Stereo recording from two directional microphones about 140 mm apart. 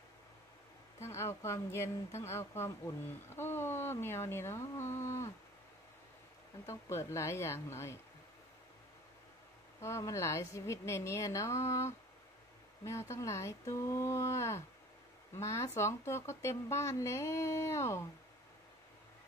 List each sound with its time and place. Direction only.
1.0 s speech: 20° left (ahead or behind)
6.6 s speech: 20° left (ahead or behind)
9.8 s speech: 20° left (ahead or behind)